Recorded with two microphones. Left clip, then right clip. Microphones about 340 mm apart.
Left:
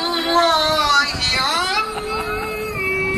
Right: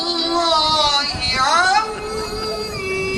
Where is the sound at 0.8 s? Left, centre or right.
Right.